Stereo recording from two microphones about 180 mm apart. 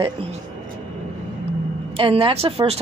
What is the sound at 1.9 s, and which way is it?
Speech, 30° right (ahead or behind).